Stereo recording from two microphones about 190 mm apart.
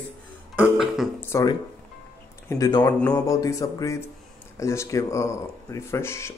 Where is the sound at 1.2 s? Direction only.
15° left (ahead or behind).